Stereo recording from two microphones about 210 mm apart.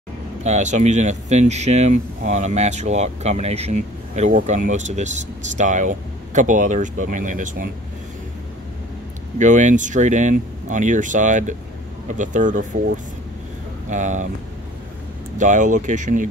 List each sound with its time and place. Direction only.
0.4 s speech: 35° right (ahead or behind)
9.4 s speech: 35° right (ahead or behind)
15.3 s speech: 35° right (ahead or behind)